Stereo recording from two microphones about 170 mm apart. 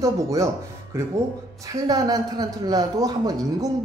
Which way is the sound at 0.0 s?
20° right (ahead or behind).